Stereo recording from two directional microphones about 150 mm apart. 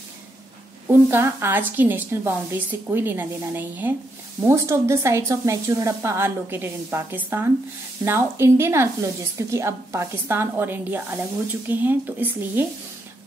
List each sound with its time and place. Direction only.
0.8 s speech: 15° right (ahead or behind)